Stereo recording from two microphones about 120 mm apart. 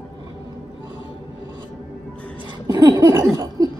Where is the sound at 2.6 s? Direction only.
30° right (ahead or behind).